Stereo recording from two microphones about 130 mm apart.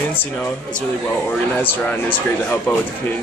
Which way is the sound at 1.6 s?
15° left (ahead or behind).